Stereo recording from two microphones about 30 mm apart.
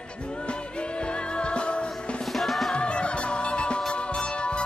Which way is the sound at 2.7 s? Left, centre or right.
Left.